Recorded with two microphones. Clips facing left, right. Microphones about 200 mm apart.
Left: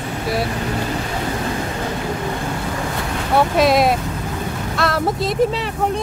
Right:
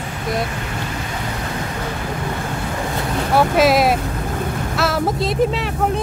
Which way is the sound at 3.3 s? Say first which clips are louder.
Even; centre (ahead or behind).